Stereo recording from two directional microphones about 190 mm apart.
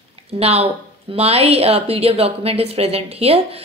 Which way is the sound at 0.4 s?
30° right (ahead or behind).